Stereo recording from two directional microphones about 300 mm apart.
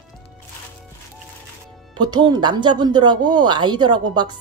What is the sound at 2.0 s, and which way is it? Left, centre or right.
Speech, centre.